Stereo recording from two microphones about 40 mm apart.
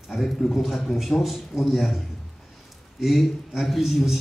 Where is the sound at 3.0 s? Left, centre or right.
Centre.